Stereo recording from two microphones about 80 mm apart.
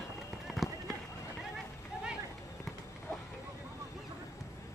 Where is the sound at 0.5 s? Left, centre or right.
Centre.